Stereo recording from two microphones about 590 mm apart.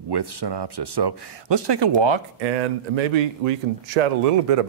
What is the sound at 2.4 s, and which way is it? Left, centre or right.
Speech, right.